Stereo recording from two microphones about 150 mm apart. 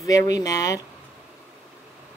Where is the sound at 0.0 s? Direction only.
20° left (ahead or behind).